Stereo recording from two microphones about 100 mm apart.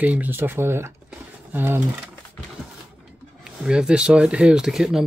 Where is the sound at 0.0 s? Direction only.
15° right (ahead or behind).